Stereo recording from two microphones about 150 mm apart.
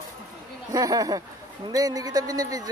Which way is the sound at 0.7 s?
20° right (ahead or behind).